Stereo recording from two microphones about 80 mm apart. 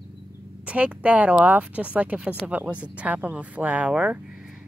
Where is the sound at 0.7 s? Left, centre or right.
Centre.